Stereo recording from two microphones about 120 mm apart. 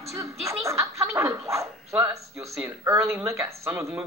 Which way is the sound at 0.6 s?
25° right (ahead or behind).